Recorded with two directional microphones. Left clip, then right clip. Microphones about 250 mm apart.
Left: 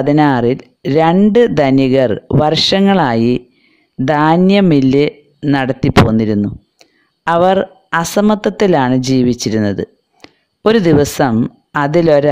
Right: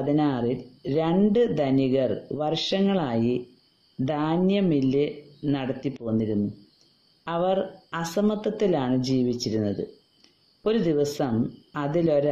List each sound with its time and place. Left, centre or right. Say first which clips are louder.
0.0 s speech: left 13 dB; left